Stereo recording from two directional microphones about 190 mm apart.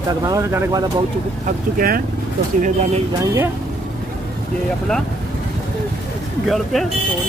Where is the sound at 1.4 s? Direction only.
50° right (ahead or behind).